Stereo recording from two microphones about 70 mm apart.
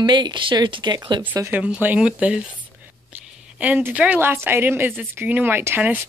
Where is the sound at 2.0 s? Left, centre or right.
Centre.